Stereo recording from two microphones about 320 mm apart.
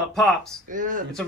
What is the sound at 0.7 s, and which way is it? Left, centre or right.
Speech, right.